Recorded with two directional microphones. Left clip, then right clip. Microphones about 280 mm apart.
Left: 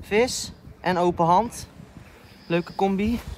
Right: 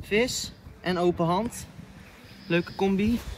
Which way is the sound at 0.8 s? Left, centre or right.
Centre.